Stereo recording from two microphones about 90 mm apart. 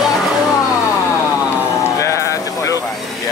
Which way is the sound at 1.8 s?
35° left (ahead or behind).